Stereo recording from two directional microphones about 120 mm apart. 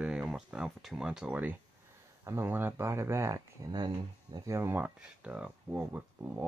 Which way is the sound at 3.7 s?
35° right (ahead or behind).